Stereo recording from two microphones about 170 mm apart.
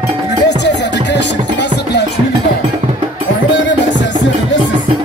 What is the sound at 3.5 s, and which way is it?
Music, 90° left.